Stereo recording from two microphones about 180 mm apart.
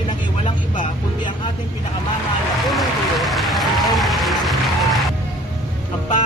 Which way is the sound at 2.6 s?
Centre (ahead or behind).